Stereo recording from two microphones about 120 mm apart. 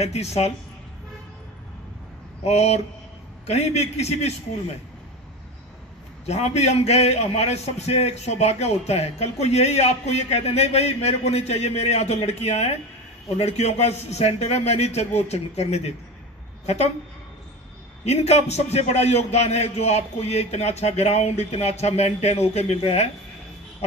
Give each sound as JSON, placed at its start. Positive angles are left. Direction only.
{"t": 0.0, "sound": "a man's voice", "side_deg": 65}
{"t": 2.4, "sound": "a man's voice", "side_deg": 65}
{"t": 6.2, "sound": "a man's voice", "side_deg": 65}
{"t": 18.0, "sound": "a man's voice", "side_deg": 65}